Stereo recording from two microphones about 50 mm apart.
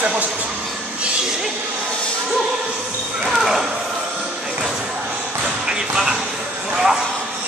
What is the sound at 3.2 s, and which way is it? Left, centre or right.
Basketball bounce, centre.